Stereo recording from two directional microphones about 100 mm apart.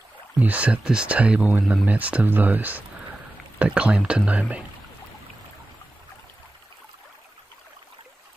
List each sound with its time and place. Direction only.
0.4 s speech: 15° right (ahead or behind)